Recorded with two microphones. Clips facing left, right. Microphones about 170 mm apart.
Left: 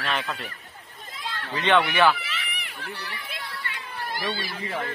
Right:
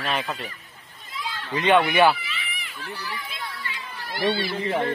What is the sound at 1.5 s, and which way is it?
Speech, 10° right (ahead or behind).